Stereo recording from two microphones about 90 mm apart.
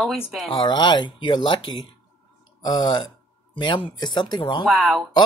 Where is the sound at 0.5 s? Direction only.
60° left (ahead or behind).